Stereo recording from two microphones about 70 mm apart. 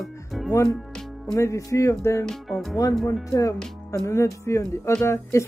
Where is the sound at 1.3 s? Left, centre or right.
Left.